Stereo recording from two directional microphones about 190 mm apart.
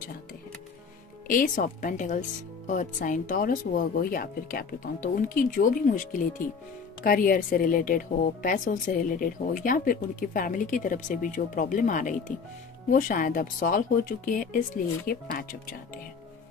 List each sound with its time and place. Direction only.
1.2 s a woman's voice: 45° left (ahead or behind)
7.0 s a woman's voice: 50° left (ahead or behind)